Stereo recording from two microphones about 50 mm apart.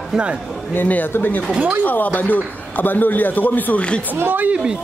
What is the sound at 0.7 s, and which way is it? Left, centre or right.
A man's voice, left.